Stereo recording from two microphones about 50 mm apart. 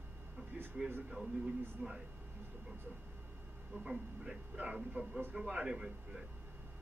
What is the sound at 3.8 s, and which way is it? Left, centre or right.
Speech, centre.